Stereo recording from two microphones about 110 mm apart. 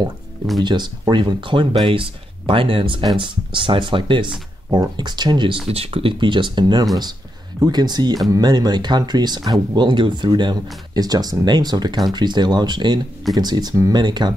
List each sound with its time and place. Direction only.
0.6 s speech: 40° right (ahead or behind)
5.7 s speech: 60° right (ahead or behind)
6.1 s speech: 45° right (ahead or behind)